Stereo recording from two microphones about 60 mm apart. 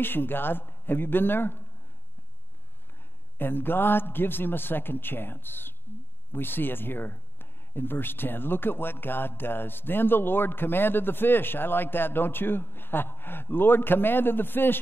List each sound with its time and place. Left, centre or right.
0.0 s speech: left
3.3 s speech: left